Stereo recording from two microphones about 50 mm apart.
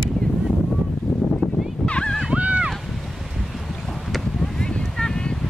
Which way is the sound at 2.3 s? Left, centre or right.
Right.